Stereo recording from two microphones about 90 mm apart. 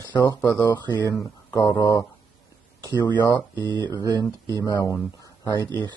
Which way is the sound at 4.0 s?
45° right (ahead or behind).